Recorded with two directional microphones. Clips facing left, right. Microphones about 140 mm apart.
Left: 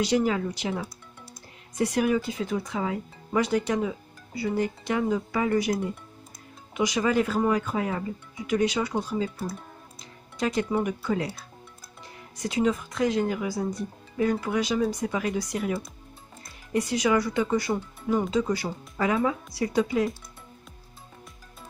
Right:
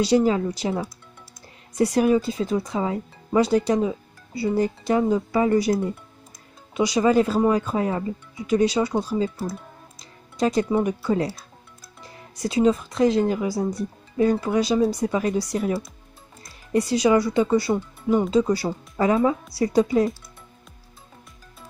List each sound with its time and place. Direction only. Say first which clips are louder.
0.0 s speech: right 5 dB; 35° right (ahead or behind)
6.7 s speech: right 5 dB; 30° right (ahead or behind)
9.9 s music: right 6 dB; 35° right (ahead or behind)
10.8 s speech: right 5 dB; 35° right (ahead or behind)